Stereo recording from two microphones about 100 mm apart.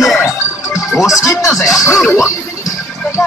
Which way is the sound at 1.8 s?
5° right (ahead or behind).